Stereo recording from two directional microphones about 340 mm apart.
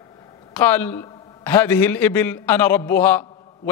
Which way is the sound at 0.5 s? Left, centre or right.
Centre.